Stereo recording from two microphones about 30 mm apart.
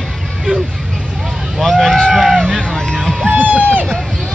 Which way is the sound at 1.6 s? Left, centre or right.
Centre.